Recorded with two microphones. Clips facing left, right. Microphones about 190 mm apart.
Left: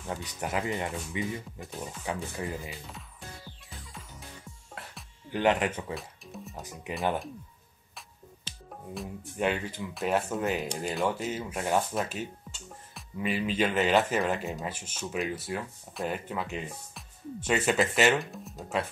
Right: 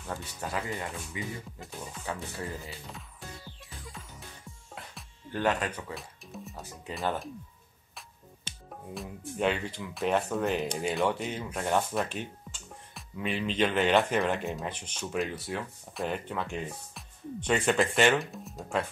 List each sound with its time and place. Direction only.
0.1 s speech: 15° left (ahead or behind)
4.8 s music: centre (ahead or behind)
5.3 s speech: 20° left (ahead or behind)
5.9 s speech: centre (ahead or behind)
6.6 s speech: 15° left (ahead or behind)
8.9 s speech: 5° left (ahead or behind)